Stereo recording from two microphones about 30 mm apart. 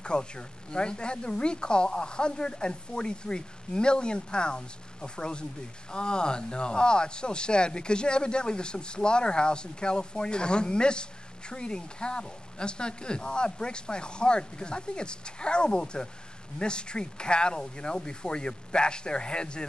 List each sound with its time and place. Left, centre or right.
0.0 s speech: left